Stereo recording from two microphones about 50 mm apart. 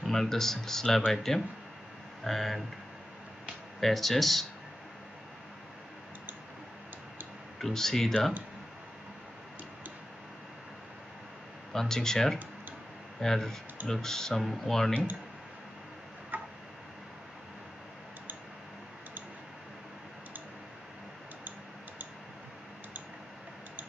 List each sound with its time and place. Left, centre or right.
0.0 s speech: centre
3.8 s speech: centre
7.5 s speech: centre
11.7 s speech: centre
16.3 s tick-tock: right